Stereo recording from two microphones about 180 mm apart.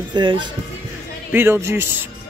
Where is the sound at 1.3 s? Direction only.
15° right (ahead or behind).